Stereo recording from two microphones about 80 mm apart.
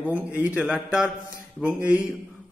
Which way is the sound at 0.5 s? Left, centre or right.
Centre.